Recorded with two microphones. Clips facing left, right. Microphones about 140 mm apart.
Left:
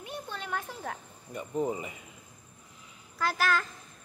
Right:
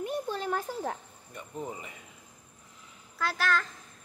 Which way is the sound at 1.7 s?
10° left (ahead or behind).